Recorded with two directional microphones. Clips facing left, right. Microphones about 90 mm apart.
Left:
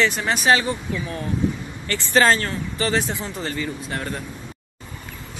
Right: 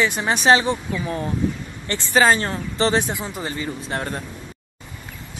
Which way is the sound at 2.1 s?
10° right (ahead or behind).